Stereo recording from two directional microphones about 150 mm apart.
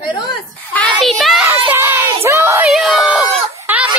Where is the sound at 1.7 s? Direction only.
15° right (ahead or behind).